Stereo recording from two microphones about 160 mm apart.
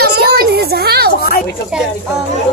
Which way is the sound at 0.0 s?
75° right (ahead or behind).